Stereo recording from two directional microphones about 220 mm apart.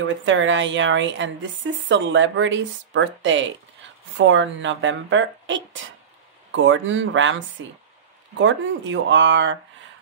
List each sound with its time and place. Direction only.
0.0 s speech: 60° right (ahead or behind)